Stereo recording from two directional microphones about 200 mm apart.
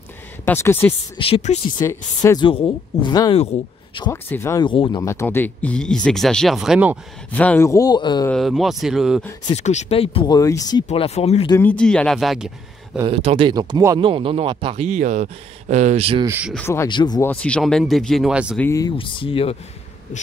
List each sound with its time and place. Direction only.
0.5 s speech: 10° left (ahead or behind)
1.1 s speech: 30° left (ahead or behind)
1.8 s speech: 15° left (ahead or behind)
4.1 s speech: 15° left (ahead or behind); by 7.0 s 5° right (ahead or behind)
7.3 s speech: 5° left (ahead or behind)
8.3 s speech: centre (ahead or behind)
9.5 s speech: 35° left (ahead or behind); by 10.8 s 15° left (ahead or behind)
10.9 s speech: 30° left (ahead or behind)
11.6 s speech: 5° left (ahead or behind)
13.0 s speech: 30° right (ahead or behind)
16.3 s speech: 10° right (ahead or behind)
16.5 s speech: 10° left (ahead or behind)
17.3 s speech: 5° left (ahead or behind)
18.6 s speech: 15° left (ahead or behind)